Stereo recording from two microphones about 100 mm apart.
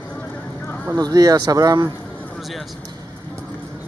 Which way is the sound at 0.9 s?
40° right (ahead or behind).